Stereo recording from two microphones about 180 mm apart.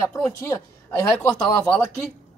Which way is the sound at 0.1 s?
15° left (ahead or behind).